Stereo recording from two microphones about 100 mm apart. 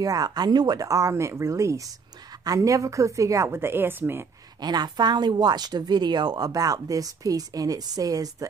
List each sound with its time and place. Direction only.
0.0 s a woman's voice: 40° right (ahead or behind); by 4.3 s 25° right (ahead or behind)
4.6 s speech: 45° right (ahead or behind)